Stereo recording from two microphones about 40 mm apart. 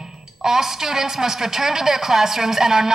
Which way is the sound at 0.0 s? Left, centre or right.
Centre.